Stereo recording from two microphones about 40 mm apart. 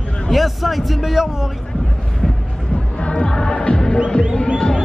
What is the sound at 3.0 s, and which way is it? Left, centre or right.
Music, left.